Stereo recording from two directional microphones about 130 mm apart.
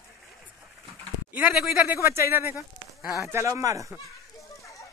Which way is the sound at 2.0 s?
20° right (ahead or behind).